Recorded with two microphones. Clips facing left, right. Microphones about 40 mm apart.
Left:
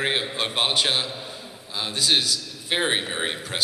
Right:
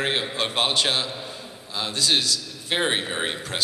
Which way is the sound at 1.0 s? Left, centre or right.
Centre.